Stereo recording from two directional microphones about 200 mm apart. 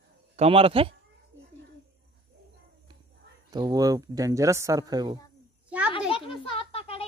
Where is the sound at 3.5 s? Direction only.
20° right (ahead or behind).